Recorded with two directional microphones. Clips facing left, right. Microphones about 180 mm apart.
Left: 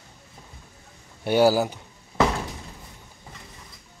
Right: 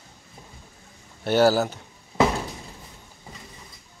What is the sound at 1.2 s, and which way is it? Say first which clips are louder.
Speech: even; 10° left (ahead or behind).